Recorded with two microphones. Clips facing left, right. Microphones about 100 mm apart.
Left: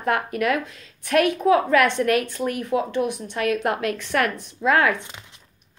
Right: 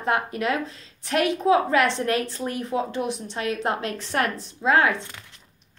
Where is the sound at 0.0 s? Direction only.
30° right (ahead or behind).